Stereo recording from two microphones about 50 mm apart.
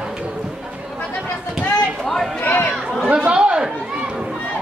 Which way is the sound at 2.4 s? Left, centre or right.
Left.